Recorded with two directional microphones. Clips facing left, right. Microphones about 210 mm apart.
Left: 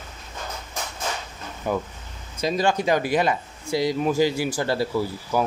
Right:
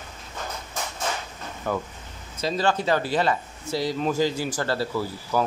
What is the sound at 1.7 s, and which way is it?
Speech, 15° left (ahead or behind).